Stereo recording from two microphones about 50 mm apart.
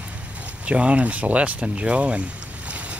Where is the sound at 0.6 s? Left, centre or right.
Right.